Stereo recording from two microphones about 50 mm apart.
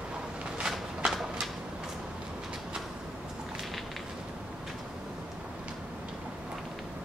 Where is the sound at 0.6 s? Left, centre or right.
Centre.